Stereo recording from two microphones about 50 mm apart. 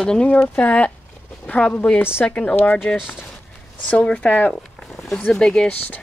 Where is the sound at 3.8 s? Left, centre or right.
Left.